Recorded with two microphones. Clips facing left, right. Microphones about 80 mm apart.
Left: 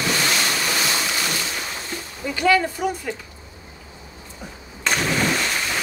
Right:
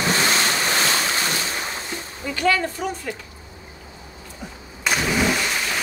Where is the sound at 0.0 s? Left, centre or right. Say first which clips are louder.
Right 2 dB; right.